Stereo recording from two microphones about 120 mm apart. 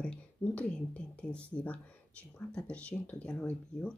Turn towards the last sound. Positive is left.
turn(degrees=10)  # may be behind; listen again after turning